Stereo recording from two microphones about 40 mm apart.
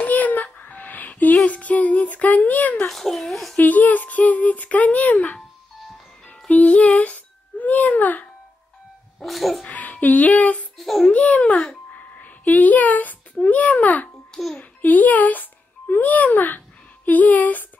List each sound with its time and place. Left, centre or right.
0.0 s child singing: left
2.0 s speech: left
2.9 s a child's voice: centre
3.5 s speech: left
6.5 s a child's voice: left
9.2 s a child's voice: centre
9.7 s speech: left
10.8 s a child's voice: centre
11.1 s a child's voice: left